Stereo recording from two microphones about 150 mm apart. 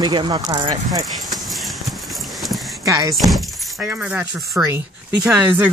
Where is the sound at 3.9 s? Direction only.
10° right (ahead or behind).